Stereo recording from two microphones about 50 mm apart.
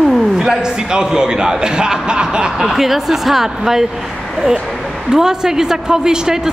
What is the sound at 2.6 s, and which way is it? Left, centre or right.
A man's voice, centre.